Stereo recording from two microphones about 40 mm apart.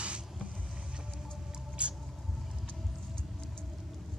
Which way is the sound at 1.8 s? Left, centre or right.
Right.